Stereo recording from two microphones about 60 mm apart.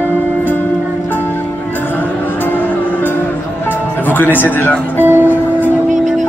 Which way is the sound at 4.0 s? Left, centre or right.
Left.